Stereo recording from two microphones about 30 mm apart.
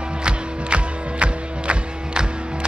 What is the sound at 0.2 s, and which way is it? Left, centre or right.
Music, right.